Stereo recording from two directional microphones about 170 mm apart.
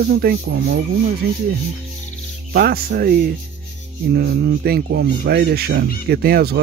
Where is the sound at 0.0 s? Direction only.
65° right (ahead or behind).